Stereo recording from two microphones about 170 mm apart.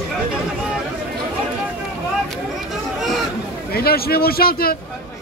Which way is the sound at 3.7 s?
65° left (ahead or behind).